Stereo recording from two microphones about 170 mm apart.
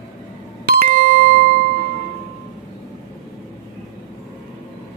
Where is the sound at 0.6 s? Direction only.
65° right (ahead or behind).